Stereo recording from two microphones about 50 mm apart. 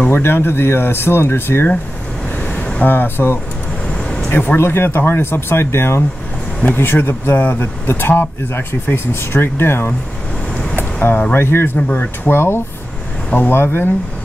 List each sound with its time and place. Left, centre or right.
0.1 s speech: left
2.8 s speech: left
4.6 s speech: left
6.7 s speech: left
10.8 s a sound: left
11.3 s speech: left